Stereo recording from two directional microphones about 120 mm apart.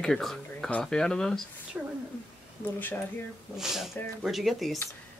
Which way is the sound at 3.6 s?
5° right (ahead or behind).